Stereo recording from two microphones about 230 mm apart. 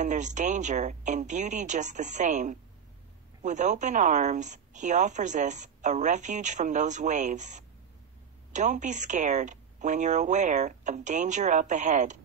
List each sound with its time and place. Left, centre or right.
0.0 s a woman's voice: right